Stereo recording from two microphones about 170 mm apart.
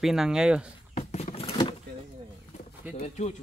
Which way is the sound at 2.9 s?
40° left (ahead or behind).